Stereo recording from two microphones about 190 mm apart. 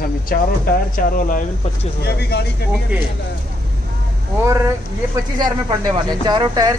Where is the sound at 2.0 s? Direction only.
60° left (ahead or behind).